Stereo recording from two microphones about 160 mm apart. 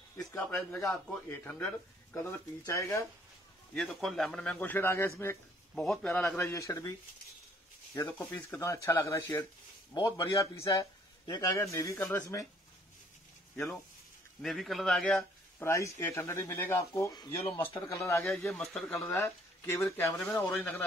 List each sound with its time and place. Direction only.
0.6 s a man's voice: 15° left (ahead or behind)
3.7 s a man's voice: 5° left (ahead or behind)
5.2 s a sound: 15° left (ahead or behind)
5.9 s a man's voice: 5° left (ahead or behind)
14.4 s a man's voice: centre (ahead or behind)
15.6 s speech: 15° left (ahead or behind)
18.5 s a man's voice: 5° left (ahead or behind)
18.9 s speech: 15° left (ahead or behind)